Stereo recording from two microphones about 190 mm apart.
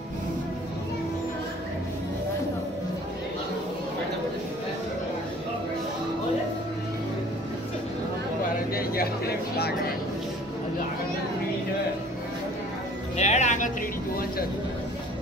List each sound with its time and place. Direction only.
8.7 s speech: 55° left (ahead or behind)
13.2 s music: 35° left (ahead or behind)